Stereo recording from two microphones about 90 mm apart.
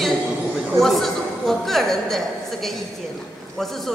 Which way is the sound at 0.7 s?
Centre (ahead or behind).